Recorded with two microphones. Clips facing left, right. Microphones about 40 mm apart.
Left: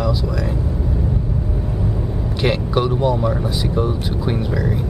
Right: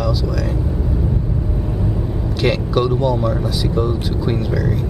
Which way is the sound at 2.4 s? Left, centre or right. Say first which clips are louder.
Right 1 dB; centre.